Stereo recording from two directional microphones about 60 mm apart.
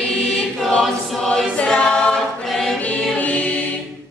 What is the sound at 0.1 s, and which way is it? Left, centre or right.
Choir, centre.